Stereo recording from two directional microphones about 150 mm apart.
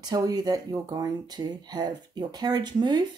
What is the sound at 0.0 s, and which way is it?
Speech, 25° right (ahead or behind).